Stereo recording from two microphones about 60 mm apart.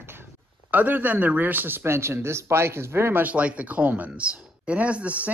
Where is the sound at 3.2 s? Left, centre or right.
Right.